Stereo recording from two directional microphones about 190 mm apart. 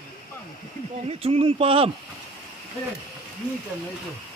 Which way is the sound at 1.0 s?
30° right (ahead or behind).